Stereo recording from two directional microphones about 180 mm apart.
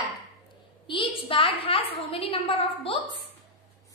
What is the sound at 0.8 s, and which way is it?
A woman's voice, 30° left (ahead or behind).